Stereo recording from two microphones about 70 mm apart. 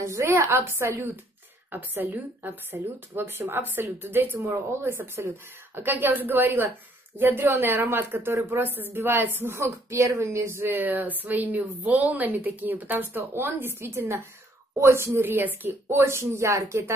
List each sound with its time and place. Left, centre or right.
0.0 s a woman's voice: right